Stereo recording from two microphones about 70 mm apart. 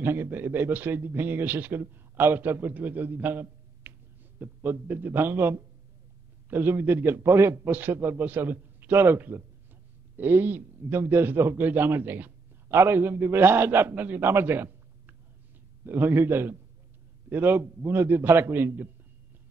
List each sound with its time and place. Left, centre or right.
0.0 s a man's voice: right